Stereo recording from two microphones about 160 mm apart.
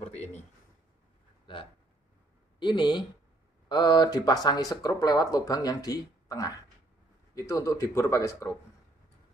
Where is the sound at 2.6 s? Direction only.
30° left (ahead or behind).